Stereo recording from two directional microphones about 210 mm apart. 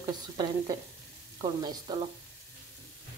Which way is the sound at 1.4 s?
20° right (ahead or behind).